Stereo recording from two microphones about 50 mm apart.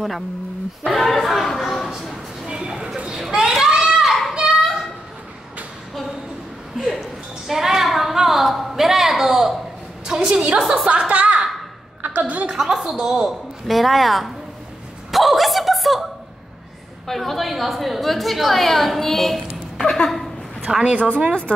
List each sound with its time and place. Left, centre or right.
0.9 s speech: centre
2.4 s a child's voice: centre
4.3 s children playing: centre
6.8 s a sound: centre
10.0 s a woman's voice: centre
10.9 s a woman's voice: right
12.4 s a woman's voice: centre
13.7 s a woman's voice: centre
15.0 s a sound: centre
17.1 s a woman's voice: centre
19.8 s a sound: centre
20.7 s a woman's voice: centre
21.5 s speech: left